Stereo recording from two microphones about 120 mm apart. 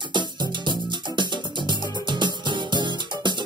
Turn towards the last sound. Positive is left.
turn(degrees=-40)  # may be behind; listen again after turning